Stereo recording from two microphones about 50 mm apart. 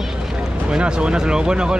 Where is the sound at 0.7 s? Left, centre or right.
Centre.